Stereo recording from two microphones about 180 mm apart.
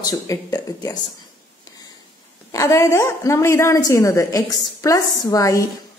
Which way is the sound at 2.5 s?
15° left (ahead or behind).